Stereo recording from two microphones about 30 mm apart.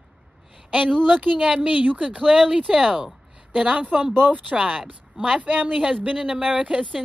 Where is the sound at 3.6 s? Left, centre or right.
Right.